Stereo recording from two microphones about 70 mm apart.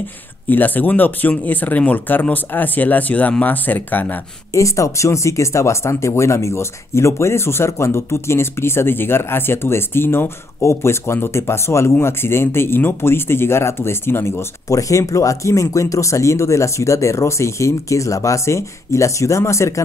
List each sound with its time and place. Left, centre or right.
0.5 s speech: left
4.5 s speech: left
14.7 s speech: left